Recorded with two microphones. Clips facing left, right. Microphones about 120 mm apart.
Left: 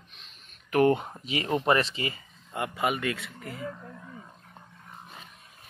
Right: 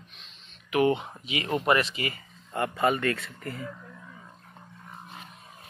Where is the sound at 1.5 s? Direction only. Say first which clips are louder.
Even; 30° left (ahead or behind).